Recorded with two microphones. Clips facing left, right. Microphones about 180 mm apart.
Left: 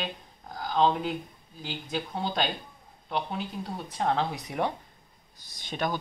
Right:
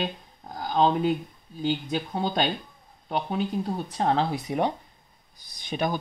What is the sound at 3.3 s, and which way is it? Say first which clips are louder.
Speech: right 7 dB; 35° right (ahead or behind).